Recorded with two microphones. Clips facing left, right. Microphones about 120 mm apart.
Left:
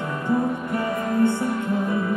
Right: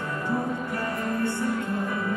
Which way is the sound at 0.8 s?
15° left (ahead or behind).